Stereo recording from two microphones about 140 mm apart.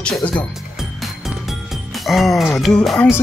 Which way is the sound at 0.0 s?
5° left (ahead or behind).